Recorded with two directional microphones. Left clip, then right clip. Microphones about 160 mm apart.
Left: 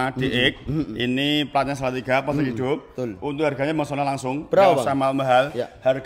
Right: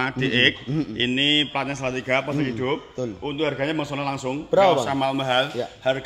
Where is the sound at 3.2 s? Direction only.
85° left; by 4.4 s 70° left (ahead or behind).